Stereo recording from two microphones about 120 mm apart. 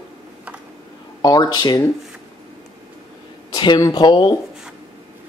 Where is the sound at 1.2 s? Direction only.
35° left (ahead or behind).